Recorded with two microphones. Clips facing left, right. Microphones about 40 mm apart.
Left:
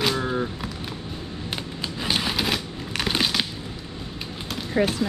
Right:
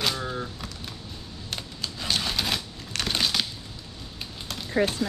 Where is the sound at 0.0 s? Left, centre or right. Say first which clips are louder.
Left 5 dB; centre.